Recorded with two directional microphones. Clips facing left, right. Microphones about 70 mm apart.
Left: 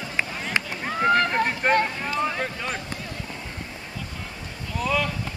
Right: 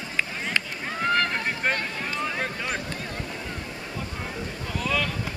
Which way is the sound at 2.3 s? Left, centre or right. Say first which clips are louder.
Even; centre.